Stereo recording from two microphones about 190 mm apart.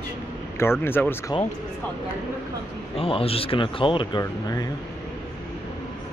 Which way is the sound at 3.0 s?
30° left (ahead or behind).